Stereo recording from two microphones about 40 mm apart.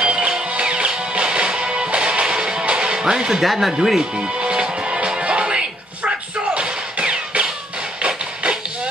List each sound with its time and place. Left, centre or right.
0.0 s music: right
3.4 s speech: centre
4.1 s music: right
6.0 s a sound: right